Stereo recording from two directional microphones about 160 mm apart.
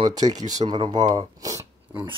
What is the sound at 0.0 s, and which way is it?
Speech, 25° right (ahead or behind).